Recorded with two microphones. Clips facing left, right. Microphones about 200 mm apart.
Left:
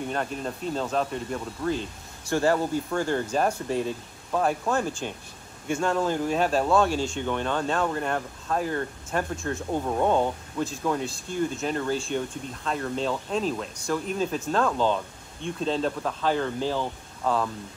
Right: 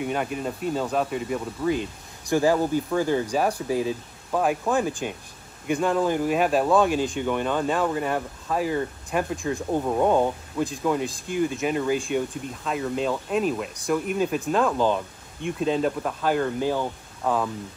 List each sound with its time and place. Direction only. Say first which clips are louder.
0.0 s speech: right 3 dB; 10° right (ahead or behind)
5.7 s speech: right 3 dB; 15° right (ahead or behind)